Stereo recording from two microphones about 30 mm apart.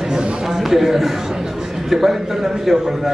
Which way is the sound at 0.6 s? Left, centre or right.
Centre.